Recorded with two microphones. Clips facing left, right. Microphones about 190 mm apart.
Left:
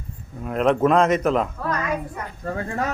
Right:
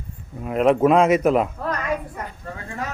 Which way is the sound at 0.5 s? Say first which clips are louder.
Right 2 dB; 5° right (ahead or behind).